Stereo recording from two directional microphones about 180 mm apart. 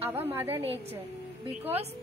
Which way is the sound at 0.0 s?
15° right (ahead or behind).